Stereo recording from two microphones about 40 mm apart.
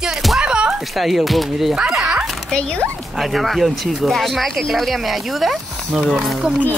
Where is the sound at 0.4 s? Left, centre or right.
Right.